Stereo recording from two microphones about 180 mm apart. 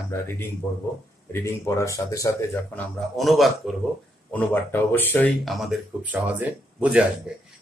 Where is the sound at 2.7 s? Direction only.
Centre (ahead or behind).